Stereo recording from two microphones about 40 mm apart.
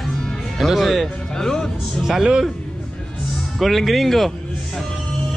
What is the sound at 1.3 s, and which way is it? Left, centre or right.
Speech, centre.